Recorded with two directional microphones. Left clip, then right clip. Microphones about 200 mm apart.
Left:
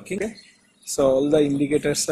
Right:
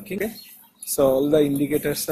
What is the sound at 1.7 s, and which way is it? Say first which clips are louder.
Speech: left 2 dB; 15° left (ahead or behind).